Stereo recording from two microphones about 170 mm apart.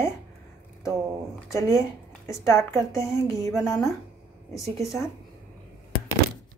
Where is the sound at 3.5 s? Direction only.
Centre (ahead or behind).